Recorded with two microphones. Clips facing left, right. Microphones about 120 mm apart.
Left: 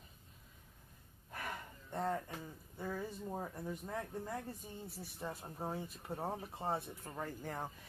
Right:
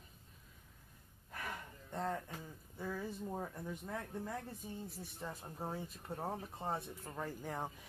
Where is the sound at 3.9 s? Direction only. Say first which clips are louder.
Even; 15° left (ahead or behind).